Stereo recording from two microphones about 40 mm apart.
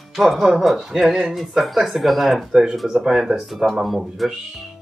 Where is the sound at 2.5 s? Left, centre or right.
Centre.